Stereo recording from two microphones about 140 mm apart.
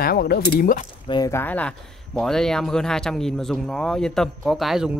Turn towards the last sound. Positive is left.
turn(degrees=0)  # may be behind; listen again after turning